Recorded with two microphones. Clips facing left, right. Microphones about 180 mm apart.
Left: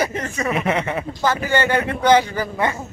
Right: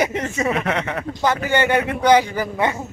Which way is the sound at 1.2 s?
20° right (ahead or behind).